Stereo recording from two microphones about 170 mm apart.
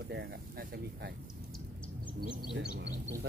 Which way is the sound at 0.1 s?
75° right (ahead or behind).